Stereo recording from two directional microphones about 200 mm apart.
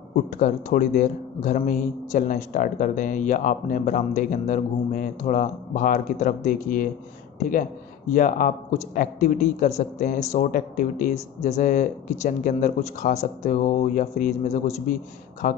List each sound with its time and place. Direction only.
0.1 s a man's voice: 40° left (ahead or behind)
8.1 s a man's voice: 40° left (ahead or behind)